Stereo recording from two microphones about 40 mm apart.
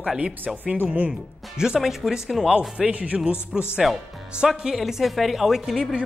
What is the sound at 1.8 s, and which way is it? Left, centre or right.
Speech, centre.